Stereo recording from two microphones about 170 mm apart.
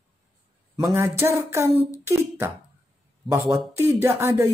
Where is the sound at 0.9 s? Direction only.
15° right (ahead or behind).